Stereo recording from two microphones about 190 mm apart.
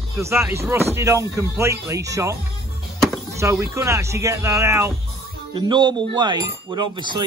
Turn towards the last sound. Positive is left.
turn(degrees=-25)  # may be behind; listen again after turning